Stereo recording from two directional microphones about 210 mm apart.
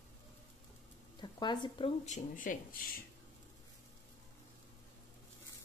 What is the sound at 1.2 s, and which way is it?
Speech, 20° left (ahead or behind).